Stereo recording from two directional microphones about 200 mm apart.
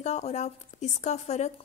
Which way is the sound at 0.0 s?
35° left (ahead or behind).